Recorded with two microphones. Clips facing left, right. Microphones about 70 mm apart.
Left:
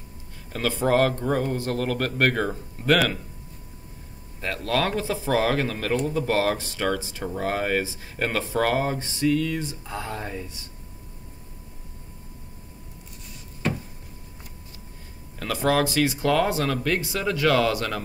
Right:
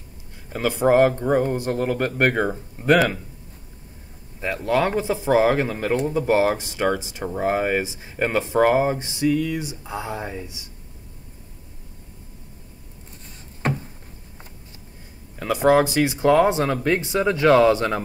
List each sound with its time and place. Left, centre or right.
0.5 s speech: centre
4.4 s speech: centre
13.6 s a sound: right
15.3 s speech: centre